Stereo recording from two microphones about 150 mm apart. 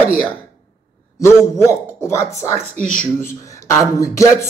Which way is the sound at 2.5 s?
50° right (ahead or behind).